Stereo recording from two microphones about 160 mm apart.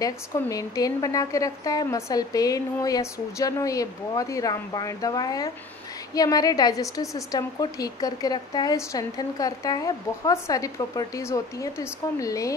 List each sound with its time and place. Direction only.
0.0 s a woman's voice: 20° left (ahead or behind)